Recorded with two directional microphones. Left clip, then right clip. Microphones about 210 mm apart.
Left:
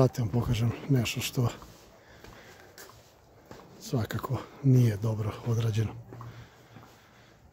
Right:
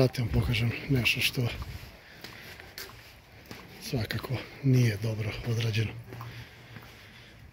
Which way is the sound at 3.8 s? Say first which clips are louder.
Left 1 dB; 25° left (ahead or behind).